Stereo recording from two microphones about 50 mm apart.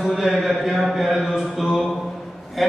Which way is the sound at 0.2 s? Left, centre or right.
Centre.